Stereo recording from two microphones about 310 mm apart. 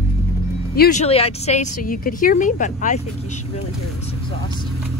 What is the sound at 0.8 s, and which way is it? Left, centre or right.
A woman's voice, left.